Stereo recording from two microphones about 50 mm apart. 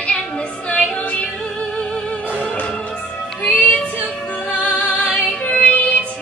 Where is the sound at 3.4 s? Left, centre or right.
Left.